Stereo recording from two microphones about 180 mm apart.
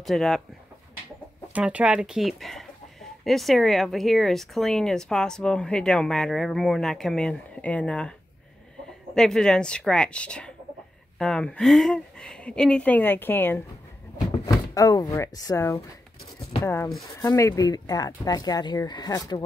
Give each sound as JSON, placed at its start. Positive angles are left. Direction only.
{"t": 0.0, "sound": "speech", "side_deg": 0}
{"t": 1.5, "sound": "speech", "side_deg": -5}
{"t": 9.1, "sound": "speech", "side_deg": 5}